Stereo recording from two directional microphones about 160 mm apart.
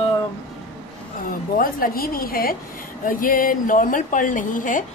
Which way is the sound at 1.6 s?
65° left (ahead or behind).